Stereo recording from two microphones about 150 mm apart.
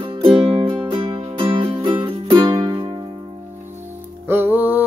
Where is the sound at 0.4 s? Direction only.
40° right (ahead or behind).